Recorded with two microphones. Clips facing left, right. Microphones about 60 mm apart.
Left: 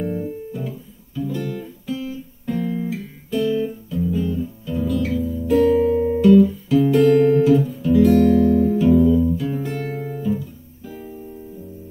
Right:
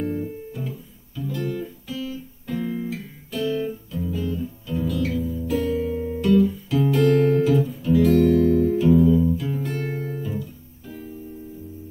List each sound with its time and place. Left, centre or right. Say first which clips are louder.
0.0 s guitar: left 2 dB; centre
5.9 s guitar: left 8 dB; left
6.2 s guitar: left 5 dB; centre